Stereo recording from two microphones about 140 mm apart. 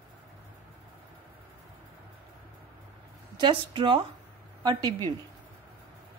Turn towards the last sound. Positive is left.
turn(degrees=-30)  # may be behind; listen again after turning